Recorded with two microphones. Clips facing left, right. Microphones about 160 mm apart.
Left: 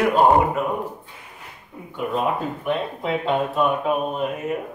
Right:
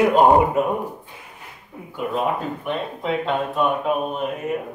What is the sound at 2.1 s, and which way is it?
A man's voice, centre (ahead or behind).